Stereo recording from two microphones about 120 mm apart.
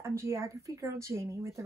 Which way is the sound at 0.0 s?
25° right (ahead or behind).